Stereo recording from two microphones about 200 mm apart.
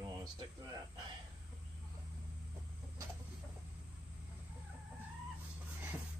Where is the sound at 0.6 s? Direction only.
20° right (ahead or behind).